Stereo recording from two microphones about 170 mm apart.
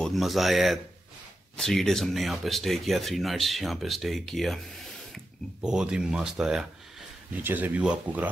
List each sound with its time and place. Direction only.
0.0 s speech: centre (ahead or behind)